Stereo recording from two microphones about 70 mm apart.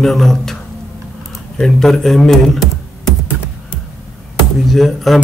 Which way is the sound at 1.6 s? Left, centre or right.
Centre.